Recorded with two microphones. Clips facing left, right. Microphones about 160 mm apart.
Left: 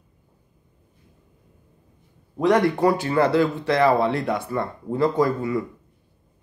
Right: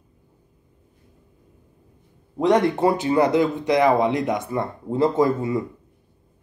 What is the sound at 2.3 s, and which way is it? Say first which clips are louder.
Speech: even; 20° right (ahead or behind).